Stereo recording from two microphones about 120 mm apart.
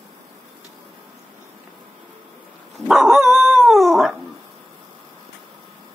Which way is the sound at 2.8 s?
5° right (ahead or behind).